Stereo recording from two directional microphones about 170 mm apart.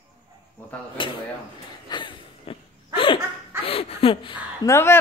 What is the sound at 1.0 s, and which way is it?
Speech, 30° left (ahead or behind).